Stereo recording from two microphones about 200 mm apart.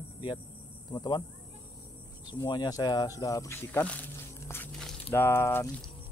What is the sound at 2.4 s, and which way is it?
Speech, 20° left (ahead or behind).